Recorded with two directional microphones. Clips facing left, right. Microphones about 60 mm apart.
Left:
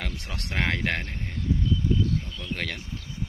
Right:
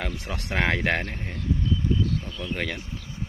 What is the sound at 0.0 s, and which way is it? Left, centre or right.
Speech, centre.